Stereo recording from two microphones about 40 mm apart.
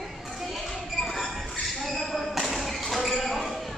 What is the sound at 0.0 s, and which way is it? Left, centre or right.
Children playing, centre.